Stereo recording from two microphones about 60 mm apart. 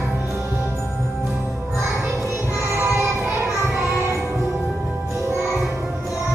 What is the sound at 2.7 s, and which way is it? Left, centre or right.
Child singing, right.